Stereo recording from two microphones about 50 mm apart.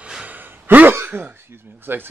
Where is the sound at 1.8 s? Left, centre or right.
Right.